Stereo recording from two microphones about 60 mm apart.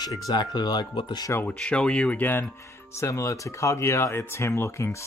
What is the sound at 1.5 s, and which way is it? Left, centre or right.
Speech, centre.